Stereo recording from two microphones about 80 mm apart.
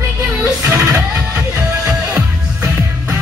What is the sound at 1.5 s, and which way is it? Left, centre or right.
Music, right.